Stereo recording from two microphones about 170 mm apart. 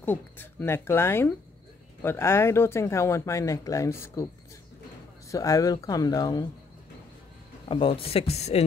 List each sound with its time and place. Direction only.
0.0 s speech: 10° left (ahead or behind)
5.3 s speech: 20° left (ahead or behind)
7.6 s speech: 30° left (ahead or behind)